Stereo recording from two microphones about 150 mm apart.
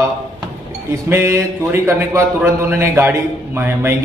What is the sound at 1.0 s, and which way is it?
A man's voice, 15° right (ahead or behind).